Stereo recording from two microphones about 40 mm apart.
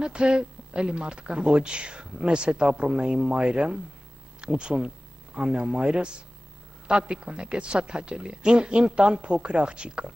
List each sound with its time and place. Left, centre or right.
0.0 s a man's voice: right